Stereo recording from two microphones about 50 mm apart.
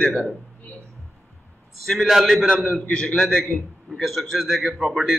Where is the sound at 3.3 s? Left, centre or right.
Centre.